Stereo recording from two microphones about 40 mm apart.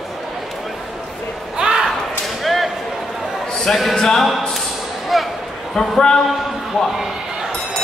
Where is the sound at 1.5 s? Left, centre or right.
Centre.